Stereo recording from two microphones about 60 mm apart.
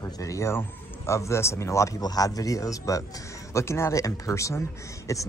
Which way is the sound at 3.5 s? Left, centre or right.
Left.